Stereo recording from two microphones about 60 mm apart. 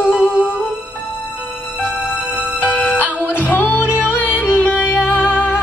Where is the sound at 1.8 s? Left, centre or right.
Left.